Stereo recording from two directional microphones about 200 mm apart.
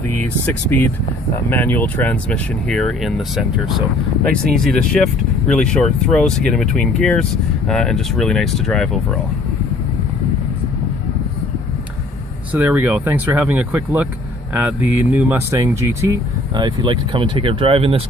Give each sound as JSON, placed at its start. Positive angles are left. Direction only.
{"t": 0.7, "sound": "speech", "side_deg": 10}
{"t": 12.5, "sound": "speech", "side_deg": -10}